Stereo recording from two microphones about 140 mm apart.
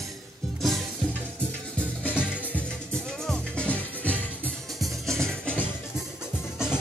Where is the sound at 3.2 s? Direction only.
5° left (ahead or behind).